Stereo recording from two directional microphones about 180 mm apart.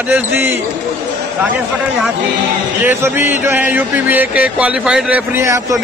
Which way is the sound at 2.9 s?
10° right (ahead or behind).